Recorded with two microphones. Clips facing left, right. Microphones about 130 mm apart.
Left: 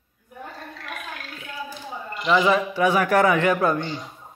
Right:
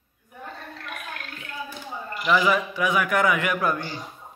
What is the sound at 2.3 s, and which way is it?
A man's voice, 25° left (ahead or behind).